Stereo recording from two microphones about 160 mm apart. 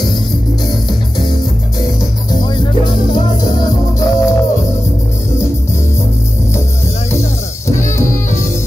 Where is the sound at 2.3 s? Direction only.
25° left (ahead or behind).